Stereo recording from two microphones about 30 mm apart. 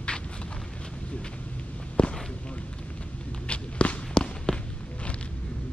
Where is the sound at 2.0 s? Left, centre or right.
Left.